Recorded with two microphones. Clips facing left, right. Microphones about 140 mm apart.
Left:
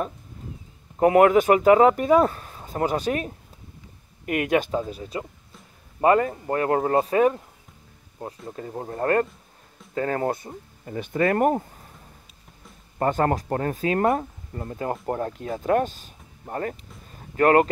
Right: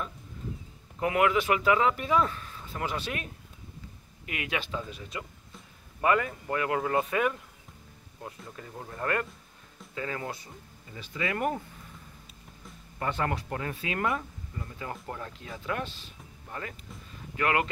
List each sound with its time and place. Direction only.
0.9 s speech: 40° left (ahead or behind)
4.3 s speech: 50° left (ahead or behind)
9.9 s speech: 45° left (ahead or behind)
13.0 s speech: 45° left (ahead or behind)